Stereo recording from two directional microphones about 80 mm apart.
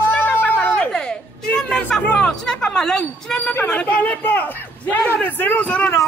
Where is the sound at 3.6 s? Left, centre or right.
Left.